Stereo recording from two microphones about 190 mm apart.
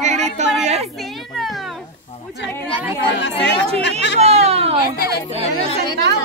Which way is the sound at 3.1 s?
70° left (ahead or behind).